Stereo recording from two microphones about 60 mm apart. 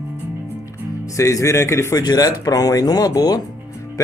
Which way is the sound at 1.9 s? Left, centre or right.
Left.